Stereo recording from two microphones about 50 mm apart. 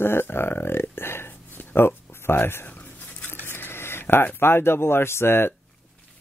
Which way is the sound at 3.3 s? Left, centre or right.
Left.